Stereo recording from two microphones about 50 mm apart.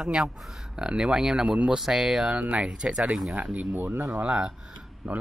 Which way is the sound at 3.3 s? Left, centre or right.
Right.